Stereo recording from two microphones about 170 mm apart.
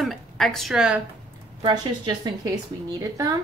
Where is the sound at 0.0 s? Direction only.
Centre (ahead or behind).